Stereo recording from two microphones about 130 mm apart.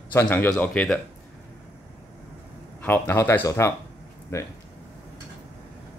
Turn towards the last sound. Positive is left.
turn(degrees=20)  # may be behind; listen again after turning